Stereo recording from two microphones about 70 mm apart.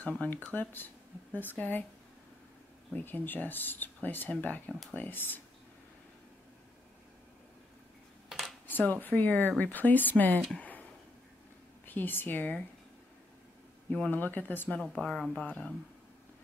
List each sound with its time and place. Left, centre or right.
0.5 s speech: left
2.9 s speech: left
8.3 s a sound: centre
8.6 s speech: left
10.5 s a sound: left
11.8 s a woman's voice: left
13.8 s speech: centre
14.1 s speech: left
14.8 s speech: centre
15.3 s speech: centre